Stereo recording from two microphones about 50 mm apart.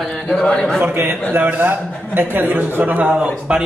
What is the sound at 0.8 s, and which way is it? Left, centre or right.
A man's voice, right.